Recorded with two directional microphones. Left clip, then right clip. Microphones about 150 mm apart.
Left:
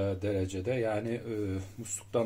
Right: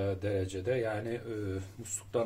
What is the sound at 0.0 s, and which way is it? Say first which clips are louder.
Speech: left 1 dB; 40° left (ahead or behind).